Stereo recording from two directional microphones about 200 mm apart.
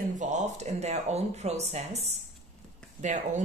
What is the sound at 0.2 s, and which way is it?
Speech, 35° right (ahead or behind).